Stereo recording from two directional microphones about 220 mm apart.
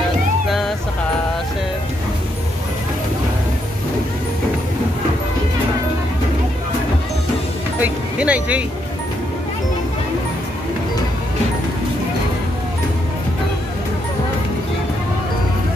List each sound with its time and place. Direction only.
7.8 s music: 5° right (ahead or behind)